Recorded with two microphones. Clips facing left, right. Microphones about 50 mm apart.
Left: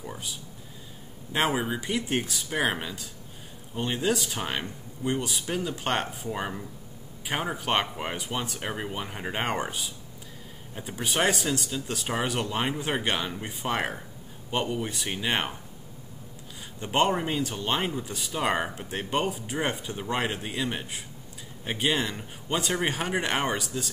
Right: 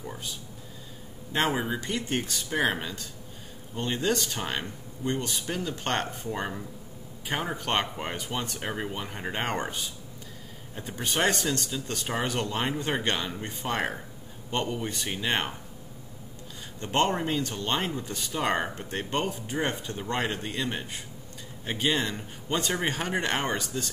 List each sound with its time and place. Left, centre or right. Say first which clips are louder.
0.0 s speech: even; centre
16.8 s speech: left 1 dB; centre